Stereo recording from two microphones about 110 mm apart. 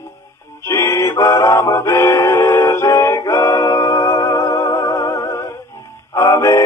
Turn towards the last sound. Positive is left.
turn(degrees=25)  # may be behind; listen again after turning